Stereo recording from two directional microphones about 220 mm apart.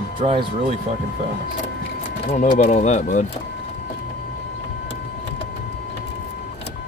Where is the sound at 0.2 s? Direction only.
25° right (ahead or behind).